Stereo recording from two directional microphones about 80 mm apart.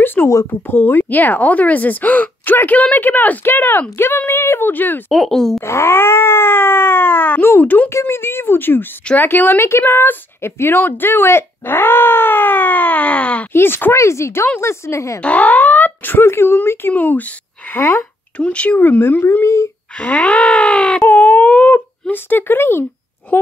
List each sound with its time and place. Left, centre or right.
0.0 s a sound: left
0.7 s speech: left
5.1 s speech: centre
5.6 s speech: left
7.9 s speech: left
13.5 s speech: left
15.1 s speech: centre
18.4 s speech: centre; by 19.7 s left
20.0 s wail: centre
21.1 s a sound: left
23.3 s speech: left